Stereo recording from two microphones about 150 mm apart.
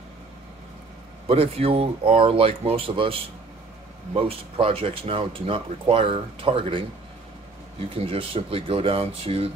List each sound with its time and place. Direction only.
1.2 s speech: 40° right (ahead or behind)
7.9 s speech: 40° right (ahead or behind)